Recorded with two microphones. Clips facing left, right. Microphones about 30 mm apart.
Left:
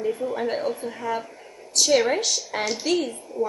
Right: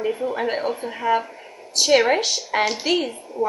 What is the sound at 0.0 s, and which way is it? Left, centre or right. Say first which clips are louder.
A woman's voice: right 2 dB; right.